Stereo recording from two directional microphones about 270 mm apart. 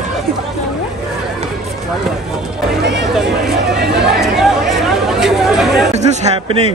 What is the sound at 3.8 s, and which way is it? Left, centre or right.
Chatter, right.